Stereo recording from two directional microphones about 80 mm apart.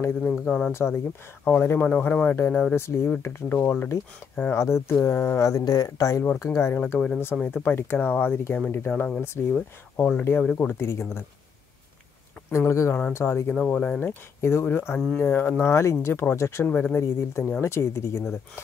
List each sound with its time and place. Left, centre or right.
0.3 s speech: centre
0.7 s speech: left
3.4 s speech: left
5.4 s speech: left
7.4 s speech: left
9.9 s speech: centre
10.7 s speech: left
12.4 s speech: left
13.5 s speech: centre
16.6 s speech: left